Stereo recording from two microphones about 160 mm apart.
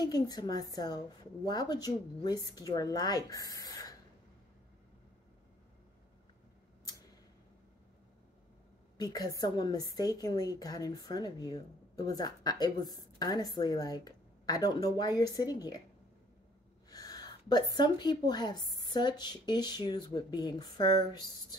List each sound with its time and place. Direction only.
0.0 s a woman's voice: 25° left (ahead or behind)
8.9 s a woman's voice: 25° left (ahead or behind)
16.9 s a woman's voice: 25° left (ahead or behind)